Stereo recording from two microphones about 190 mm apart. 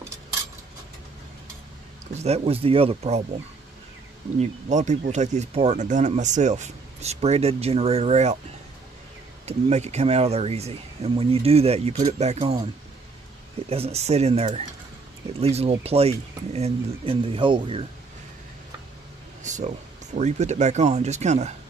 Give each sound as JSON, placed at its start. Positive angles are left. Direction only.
{"t": 2.1, "sound": "speech", "side_deg": -35}
{"t": 4.4, "sound": "speech", "side_deg": -40}
{"t": 9.5, "sound": "speech", "side_deg": -35}
{"t": 13.7, "sound": "speech", "side_deg": -30}
{"t": 19.4, "sound": "speech", "side_deg": -40}